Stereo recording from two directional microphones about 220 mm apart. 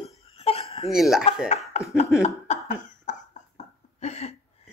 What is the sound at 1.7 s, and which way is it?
Speech, 30° left (ahead or behind).